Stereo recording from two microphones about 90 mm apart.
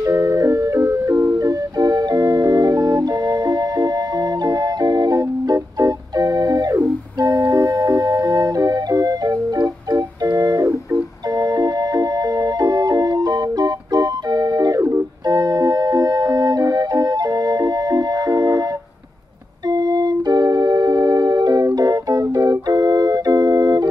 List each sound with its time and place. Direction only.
0.0 s music: 35° right (ahead or behind)
15.2 s organ: 45° right (ahead or behind)
19.7 s organ: 45° right (ahead or behind)